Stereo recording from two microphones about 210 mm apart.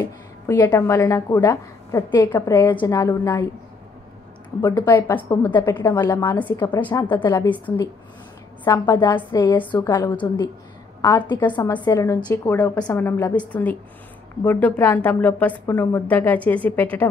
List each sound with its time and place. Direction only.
0.0 s a woman's voice: 15° left (ahead or behind)
4.6 s a woman's voice: 15° left (ahead or behind)
7.5 s a woman's voice: 10° left (ahead or behind)